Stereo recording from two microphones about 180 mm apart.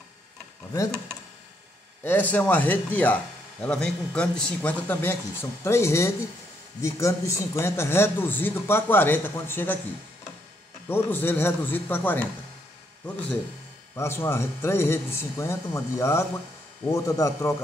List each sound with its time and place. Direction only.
2.0 s a man's voice: 10° left (ahead or behind)
10.9 s a man's voice: 10° left (ahead or behind)
13.9 s a man's voice: 15° left (ahead or behind)